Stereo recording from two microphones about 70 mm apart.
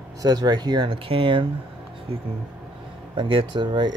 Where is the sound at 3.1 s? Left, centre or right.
Right.